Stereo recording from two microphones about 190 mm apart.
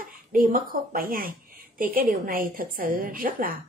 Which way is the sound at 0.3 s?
45° right (ahead or behind).